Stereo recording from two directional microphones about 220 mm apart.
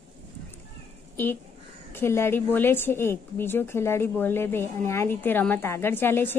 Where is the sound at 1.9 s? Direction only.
10° left (ahead or behind).